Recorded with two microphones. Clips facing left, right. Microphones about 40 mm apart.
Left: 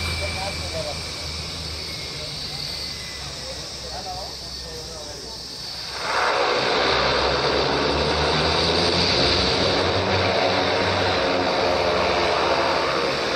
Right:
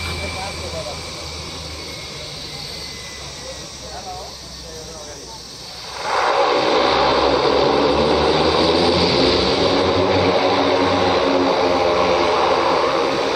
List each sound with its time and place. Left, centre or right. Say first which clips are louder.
0.2 s vehicle: right 1 dB; right
6.1 s vehicle: right 5 dB; centre